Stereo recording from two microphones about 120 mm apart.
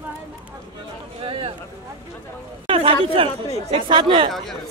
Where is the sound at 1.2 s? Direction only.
50° right (ahead or behind).